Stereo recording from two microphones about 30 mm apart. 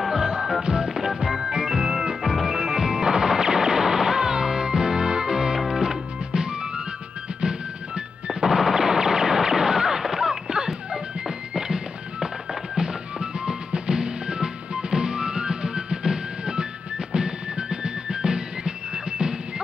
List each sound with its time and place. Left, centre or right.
0.0 s music: centre
0.6 s music: right
0.9 s music: centre
8.3 s machine gun: centre
10.1 s music: right